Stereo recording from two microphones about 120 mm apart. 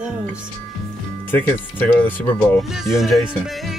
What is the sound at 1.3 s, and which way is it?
Speech, 15° left (ahead or behind).